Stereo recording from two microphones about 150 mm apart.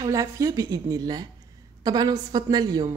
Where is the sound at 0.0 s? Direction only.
20° right (ahead or behind).